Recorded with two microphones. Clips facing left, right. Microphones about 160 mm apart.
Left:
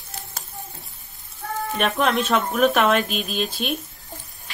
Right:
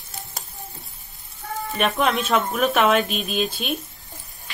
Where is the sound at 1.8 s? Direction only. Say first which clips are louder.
Even; centre (ahead or behind).